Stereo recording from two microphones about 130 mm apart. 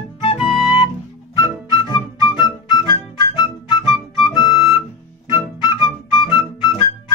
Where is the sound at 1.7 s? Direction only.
35° left (ahead or behind).